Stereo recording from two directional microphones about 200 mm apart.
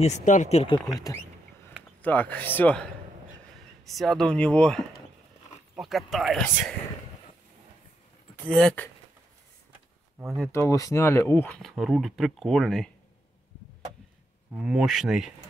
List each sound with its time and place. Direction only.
0.0 s speech: 40° left (ahead or behind)
0.9 s speech: 20° left (ahead or behind)
2.0 s speech: 5° left (ahead or behind)
8.5 s speech: 5° left (ahead or behind)
10.2 s speech: centre (ahead or behind)
10.5 s speech: 15° left (ahead or behind)
14.6 s speech: centre (ahead or behind)